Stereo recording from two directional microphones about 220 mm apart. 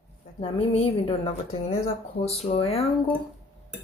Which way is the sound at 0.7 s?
25° left (ahead or behind).